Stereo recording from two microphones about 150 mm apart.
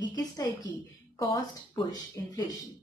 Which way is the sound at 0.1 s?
25° left (ahead or behind).